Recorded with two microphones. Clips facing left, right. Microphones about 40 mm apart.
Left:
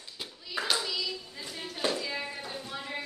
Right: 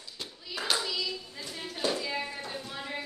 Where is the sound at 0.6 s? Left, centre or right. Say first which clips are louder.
Right 1 dB; centre.